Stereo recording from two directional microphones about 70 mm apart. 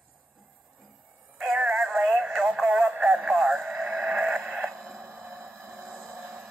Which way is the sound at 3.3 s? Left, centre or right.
Centre.